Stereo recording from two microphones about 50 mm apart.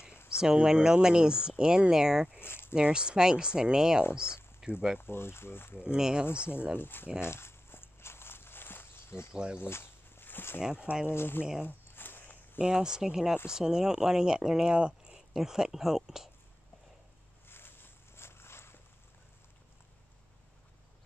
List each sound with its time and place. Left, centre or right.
0.3 s speech: centre
2.3 s a sound: left
2.7 s speech: centre
4.9 s speech: left
5.9 s speech: centre
6.8 s speech: left
7.2 s walk: left
9.3 s speech: centre
9.6 s a sound: left
11.1 s speech: left
11.6 s a sound: left
12.5 s speech: centre
15.1 s speech: centre
17.5 s walk: left